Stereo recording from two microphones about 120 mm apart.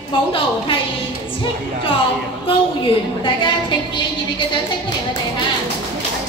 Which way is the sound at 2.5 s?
45° left (ahead or behind).